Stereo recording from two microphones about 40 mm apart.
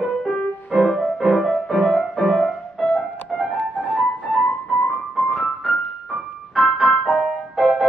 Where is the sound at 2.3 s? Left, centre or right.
Centre.